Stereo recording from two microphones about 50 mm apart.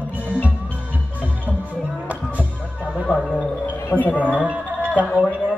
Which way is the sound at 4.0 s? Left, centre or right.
Left.